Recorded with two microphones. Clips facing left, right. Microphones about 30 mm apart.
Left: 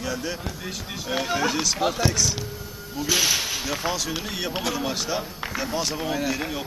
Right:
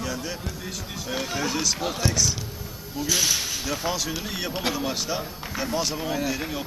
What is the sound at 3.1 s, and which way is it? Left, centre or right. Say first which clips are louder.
Speech: left 2 dB; centre.